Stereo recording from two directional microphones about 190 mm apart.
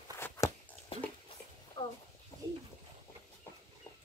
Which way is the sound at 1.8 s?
25° left (ahead or behind).